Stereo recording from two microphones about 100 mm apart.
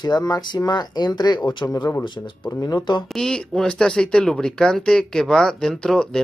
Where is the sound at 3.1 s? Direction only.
10° left (ahead or behind).